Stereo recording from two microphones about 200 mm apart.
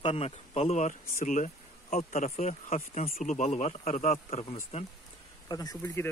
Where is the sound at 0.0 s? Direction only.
30° left (ahead or behind).